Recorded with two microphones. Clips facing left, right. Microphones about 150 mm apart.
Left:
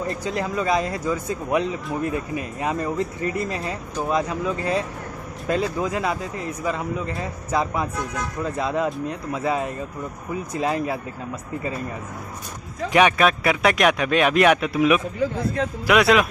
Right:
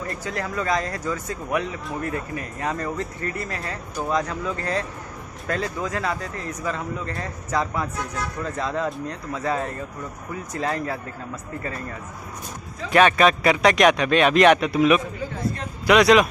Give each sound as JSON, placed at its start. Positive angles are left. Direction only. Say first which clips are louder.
{"t": 0.1, "sound": "speech", "louder": "left 3 dB", "side_deg": 20}
{"t": 4.1, "sound": "a man's voice", "louder": "left 2 dB", "side_deg": 15}
{"t": 12.9, "sound": "a man's voice", "louder": "right 1 dB", "side_deg": 10}